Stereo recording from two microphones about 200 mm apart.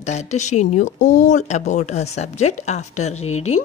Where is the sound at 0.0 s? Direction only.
35° left (ahead or behind).